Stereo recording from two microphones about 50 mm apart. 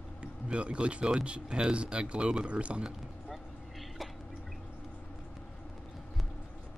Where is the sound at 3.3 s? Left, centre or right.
Centre.